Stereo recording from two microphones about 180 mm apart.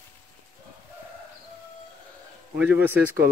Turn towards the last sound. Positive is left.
turn(degrees=-10)  # may be behind; listen again after turning